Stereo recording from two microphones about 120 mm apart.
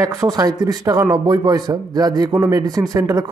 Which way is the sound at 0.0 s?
30° right (ahead or behind).